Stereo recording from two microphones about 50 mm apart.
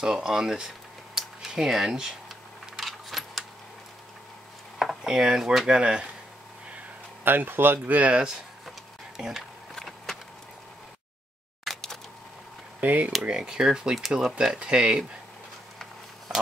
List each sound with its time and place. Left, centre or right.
0.0 s a sound: centre
1.5 s keys jangling: centre
4.7 s speech: centre
5.7 s speech: centre
7.2 s speech: right
9.1 s speech: centre
11.6 s a sound: centre
12.8 s speech: right
13.2 s speech: centre